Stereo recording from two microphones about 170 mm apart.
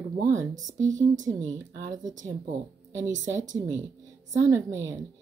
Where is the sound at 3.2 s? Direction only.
45° right (ahead or behind).